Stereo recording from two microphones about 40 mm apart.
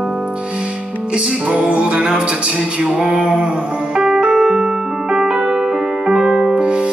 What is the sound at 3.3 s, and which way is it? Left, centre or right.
Music, centre.